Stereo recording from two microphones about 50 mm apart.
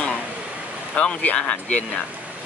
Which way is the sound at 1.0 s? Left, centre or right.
Left.